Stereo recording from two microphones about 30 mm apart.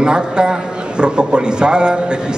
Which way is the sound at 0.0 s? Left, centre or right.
Right.